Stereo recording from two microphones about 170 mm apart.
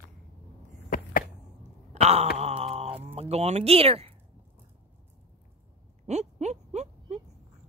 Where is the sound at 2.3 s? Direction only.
40° right (ahead or behind).